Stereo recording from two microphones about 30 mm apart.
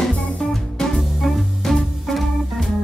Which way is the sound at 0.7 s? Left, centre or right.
Centre.